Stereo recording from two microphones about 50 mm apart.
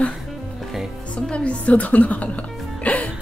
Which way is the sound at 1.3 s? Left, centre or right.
Left.